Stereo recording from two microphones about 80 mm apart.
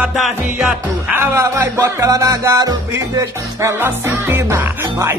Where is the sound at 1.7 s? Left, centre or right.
Right.